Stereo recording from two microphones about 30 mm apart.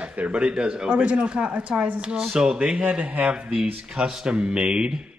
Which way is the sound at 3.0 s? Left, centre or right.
Right.